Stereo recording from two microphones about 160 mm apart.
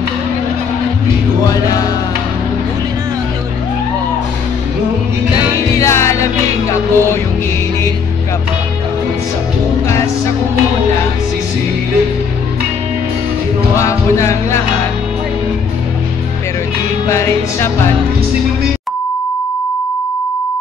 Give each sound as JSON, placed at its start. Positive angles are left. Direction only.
{"t": 1.5, "sound": "music", "side_deg": 20}
{"t": 5.8, "sound": "music", "side_deg": 15}
{"t": 13.7, "sound": "music", "side_deg": 20}
{"t": 17.1, "sound": "music", "side_deg": 15}